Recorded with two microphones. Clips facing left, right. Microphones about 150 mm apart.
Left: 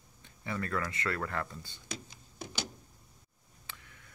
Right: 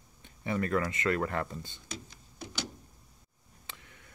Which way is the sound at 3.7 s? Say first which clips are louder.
Right 1 dB; 20° right (ahead or behind).